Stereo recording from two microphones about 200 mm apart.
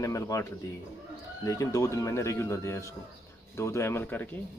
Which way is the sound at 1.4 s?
15° left (ahead or behind).